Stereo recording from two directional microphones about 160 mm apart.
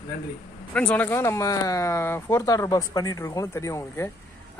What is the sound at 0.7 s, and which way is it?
Speech, 10° left (ahead or behind).